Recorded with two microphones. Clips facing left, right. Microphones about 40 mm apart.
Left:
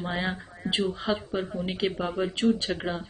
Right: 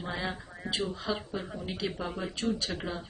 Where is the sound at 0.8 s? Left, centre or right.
Left.